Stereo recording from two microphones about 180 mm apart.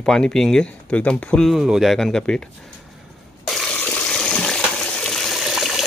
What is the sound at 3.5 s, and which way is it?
Water, 5° left (ahead or behind).